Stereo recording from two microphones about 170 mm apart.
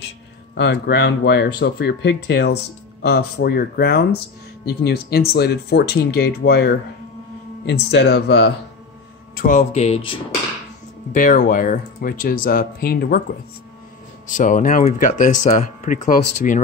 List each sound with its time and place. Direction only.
0.6 s speech: 75° left (ahead or behind)
7.6 s speech: 90° left
9.3 s speech: 55° left (ahead or behind)
11.1 s speech: 55° left (ahead or behind)
14.2 s speech: 50° left (ahead or behind)